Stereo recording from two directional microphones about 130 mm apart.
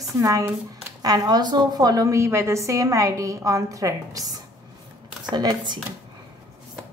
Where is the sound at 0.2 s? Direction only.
25° right (ahead or behind).